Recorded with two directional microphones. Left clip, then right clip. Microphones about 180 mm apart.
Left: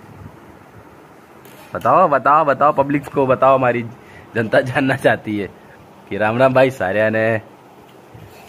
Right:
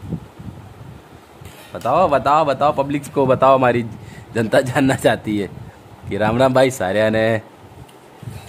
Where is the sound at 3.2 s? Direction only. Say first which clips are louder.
Even; 45° right (ahead or behind).